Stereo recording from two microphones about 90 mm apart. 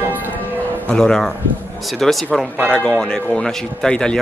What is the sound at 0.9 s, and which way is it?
A man's voice, 5° left (ahead or behind).